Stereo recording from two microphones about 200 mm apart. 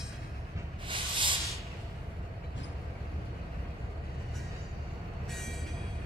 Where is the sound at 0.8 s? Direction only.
25° right (ahead or behind).